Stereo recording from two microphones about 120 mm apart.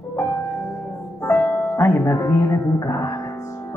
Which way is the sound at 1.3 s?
20° left (ahead or behind).